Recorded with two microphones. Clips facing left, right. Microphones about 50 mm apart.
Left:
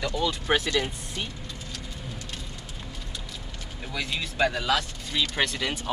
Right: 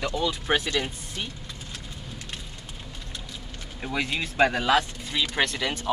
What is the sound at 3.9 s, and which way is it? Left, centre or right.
Speech, right.